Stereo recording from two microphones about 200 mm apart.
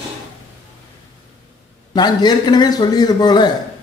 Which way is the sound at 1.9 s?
20° left (ahead or behind).